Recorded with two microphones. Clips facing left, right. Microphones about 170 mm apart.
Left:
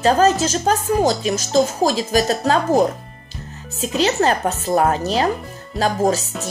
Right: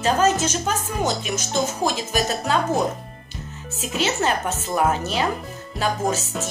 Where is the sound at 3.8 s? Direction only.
35° left (ahead or behind).